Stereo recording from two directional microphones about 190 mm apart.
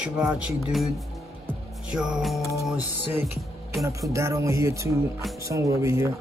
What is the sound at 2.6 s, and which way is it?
Speech, 10° right (ahead or behind).